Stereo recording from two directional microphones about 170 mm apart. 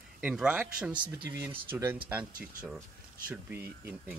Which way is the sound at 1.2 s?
15° right (ahead or behind).